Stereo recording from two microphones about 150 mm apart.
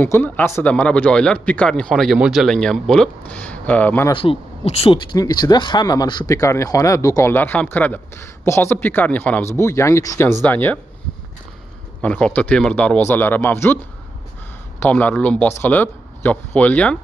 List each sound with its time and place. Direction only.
0.0 s a man's voice: 15° left (ahead or behind)
4.1 s speech: 35° left (ahead or behind); by 10.8 s 10° left (ahead or behind)
12.0 s a man's voice: 10° left (ahead or behind)
14.8 s a man's voice: 10° left (ahead or behind)